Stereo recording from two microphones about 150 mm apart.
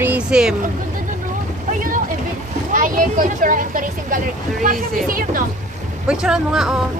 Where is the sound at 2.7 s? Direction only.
60° right (ahead or behind).